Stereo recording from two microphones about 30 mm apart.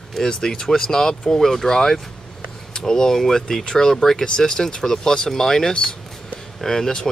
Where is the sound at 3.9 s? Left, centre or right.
Centre.